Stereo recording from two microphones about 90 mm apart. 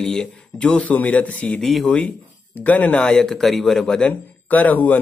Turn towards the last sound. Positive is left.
turn(degrees=15)  # may be behind; listen again after turning